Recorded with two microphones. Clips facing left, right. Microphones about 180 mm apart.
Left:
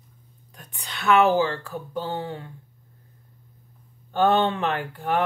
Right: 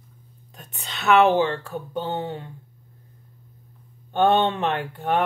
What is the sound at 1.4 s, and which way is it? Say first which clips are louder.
Speech: right 2 dB; 25° right (ahead or behind).